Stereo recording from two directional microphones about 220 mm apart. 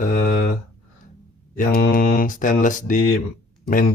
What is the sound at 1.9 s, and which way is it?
Speech, 40° left (ahead or behind).